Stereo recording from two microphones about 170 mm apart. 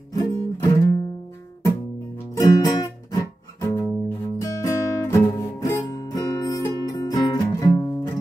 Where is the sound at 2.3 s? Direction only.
20° left (ahead or behind).